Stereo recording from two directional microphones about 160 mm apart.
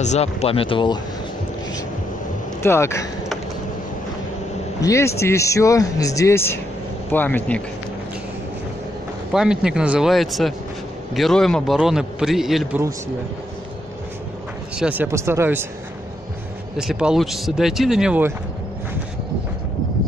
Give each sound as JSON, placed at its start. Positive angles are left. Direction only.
{"t": 0.0, "sound": "speech", "side_deg": 45}
{"t": 2.6, "sound": "speech", "side_deg": 15}
{"t": 4.8, "sound": "speech", "side_deg": 15}
{"t": 9.3, "sound": "a man's voice", "side_deg": -5}
{"t": 14.8, "sound": "speech", "side_deg": -10}
{"t": 16.7, "sound": "a man's voice", "side_deg": -5}